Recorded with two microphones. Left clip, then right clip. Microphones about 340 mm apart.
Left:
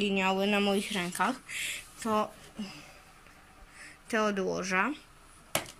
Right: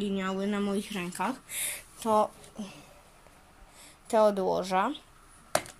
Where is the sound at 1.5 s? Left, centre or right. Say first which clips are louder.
Left 2 dB; right.